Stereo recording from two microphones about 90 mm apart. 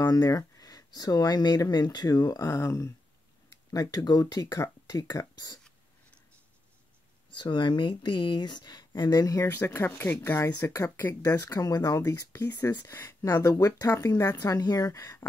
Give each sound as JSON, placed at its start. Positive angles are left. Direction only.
{"t": 0.0, "sound": "speech", "side_deg": 45}
{"t": 3.7, "sound": "speech", "side_deg": 45}
{"t": 7.3, "sound": "speech", "side_deg": 60}
{"t": 9.5, "sound": "speech", "side_deg": 25}
{"t": 11.5, "sound": "speech", "side_deg": 45}
{"t": 12.3, "sound": "speech", "side_deg": 25}